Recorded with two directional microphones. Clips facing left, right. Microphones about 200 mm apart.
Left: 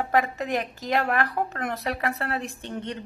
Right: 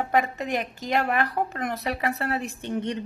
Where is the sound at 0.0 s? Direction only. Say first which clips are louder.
Even; centre (ahead or behind).